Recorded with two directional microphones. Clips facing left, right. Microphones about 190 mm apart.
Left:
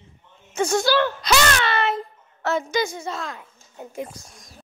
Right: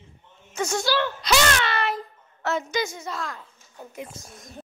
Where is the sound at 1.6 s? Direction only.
25° left (ahead or behind).